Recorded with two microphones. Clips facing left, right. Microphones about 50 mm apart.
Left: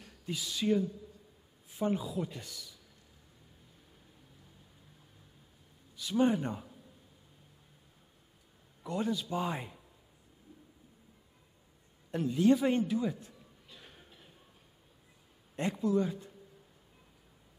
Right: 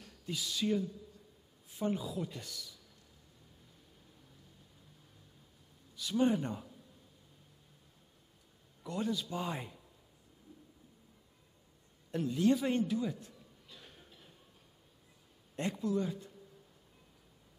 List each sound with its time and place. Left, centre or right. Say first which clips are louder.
0.0 s speech: left 1 dB; centre
5.9 s speech: left 2 dB; centre
8.8 s a man's voice: left 2 dB; centre
12.1 s a sound: left 3 dB; centre
15.5 s speech: left 4 dB; centre